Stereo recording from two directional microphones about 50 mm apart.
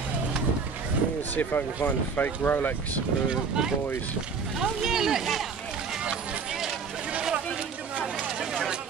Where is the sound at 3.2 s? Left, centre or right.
Centre.